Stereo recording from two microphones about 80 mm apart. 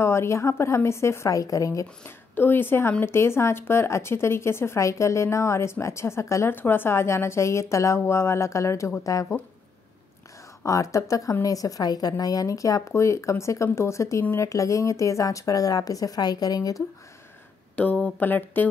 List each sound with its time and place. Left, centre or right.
0.0 s speech: left
2.0 s speech: left
10.6 s speech: left
17.7 s speech: centre